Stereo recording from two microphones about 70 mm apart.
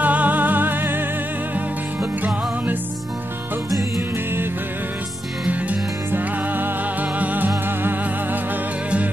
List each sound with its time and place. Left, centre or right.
0.0 s music: right
2.2 s music: right
5.5 s music: right